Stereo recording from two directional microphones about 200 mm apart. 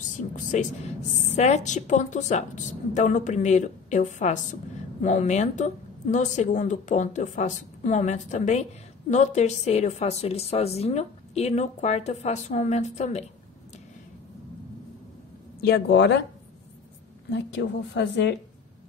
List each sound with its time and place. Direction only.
0.0 s a woman's voice: 40° left (ahead or behind)
15.6 s a woman's voice: 55° left (ahead or behind)
17.3 s a woman's voice: 65° left (ahead or behind)